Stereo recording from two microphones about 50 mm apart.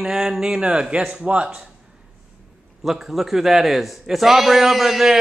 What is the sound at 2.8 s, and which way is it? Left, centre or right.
A man's voice, centre.